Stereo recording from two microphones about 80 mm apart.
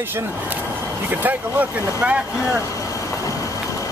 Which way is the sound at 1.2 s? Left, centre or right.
Right.